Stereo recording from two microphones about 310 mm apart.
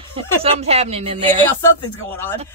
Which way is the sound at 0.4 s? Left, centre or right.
Centre.